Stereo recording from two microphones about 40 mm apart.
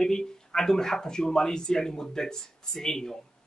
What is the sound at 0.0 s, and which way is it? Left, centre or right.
Speech, centre.